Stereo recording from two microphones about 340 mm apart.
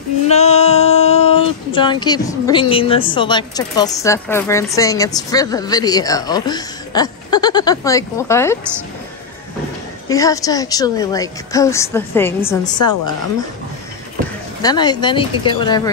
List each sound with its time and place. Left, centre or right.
0.3 s a sound: centre
2.7 s speech: centre
10.0 s speech: centre
14.6 s speech: centre